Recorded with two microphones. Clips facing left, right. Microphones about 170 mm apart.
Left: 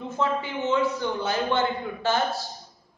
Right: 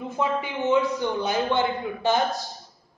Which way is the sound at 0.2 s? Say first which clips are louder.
Right 1 dB; 15° right (ahead or behind).